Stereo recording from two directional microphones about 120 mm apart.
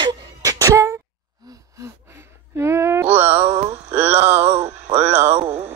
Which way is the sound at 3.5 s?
60° right (ahead or behind).